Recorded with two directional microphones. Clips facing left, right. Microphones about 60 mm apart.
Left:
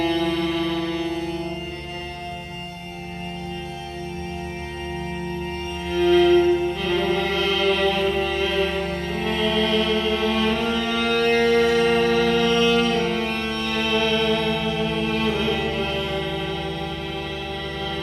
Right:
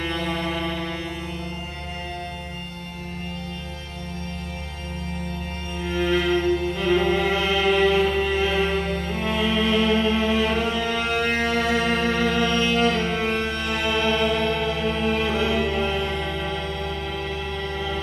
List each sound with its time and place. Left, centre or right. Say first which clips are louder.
0.0 s music: left 5 dB; centre
5.9 s music: left 6 dB; centre